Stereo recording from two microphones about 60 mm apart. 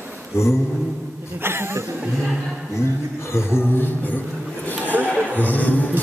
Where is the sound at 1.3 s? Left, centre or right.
Right.